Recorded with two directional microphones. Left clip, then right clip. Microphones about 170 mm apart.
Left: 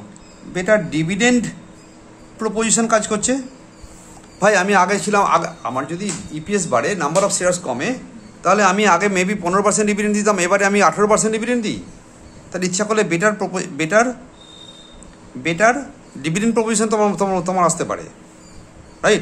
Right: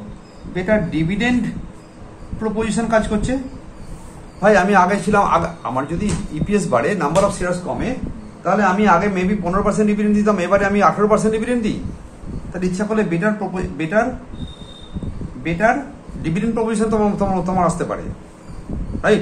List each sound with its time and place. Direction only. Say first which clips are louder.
0.6 s a man's voice: left 2 dB; 75° left (ahead or behind)
2.4 s a man's voice: left 2 dB; 75° left (ahead or behind)
4.4 s a man's voice: right 1 dB; 55° left (ahead or behind); by 7.4 s 30° left (ahead or behind)
8.5 s a man's voice: left 1 dB; 60° left (ahead or behind); by 11.7 s 30° left (ahead or behind)
12.5 s a man's voice: left 2 dB; 60° left (ahead or behind)
15.4 s a man's voice: left 2 dB; 70° left (ahead or behind); by 18.0 s 45° left (ahead or behind)